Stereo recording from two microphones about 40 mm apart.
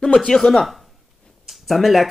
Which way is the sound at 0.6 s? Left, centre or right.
Centre.